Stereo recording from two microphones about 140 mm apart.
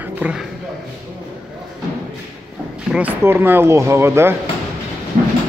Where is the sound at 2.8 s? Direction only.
10° right (ahead or behind).